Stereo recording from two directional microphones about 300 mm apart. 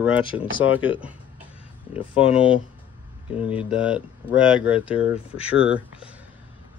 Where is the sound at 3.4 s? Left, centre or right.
Centre.